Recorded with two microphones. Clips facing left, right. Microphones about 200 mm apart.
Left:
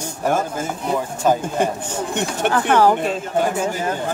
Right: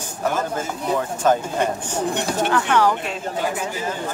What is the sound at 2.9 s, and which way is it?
Speech, 45° left (ahead or behind).